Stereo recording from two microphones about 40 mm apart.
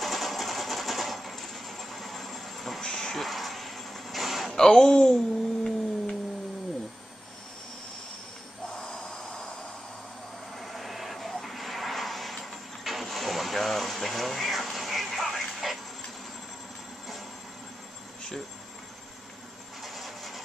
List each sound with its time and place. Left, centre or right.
0.0 s sewing machine: centre
2.8 s a sound: centre
4.5 s speech: centre
5.1 s humming: centre
8.6 s a sound: centre
10.6 s vehicle: centre
19.8 s vehicle: centre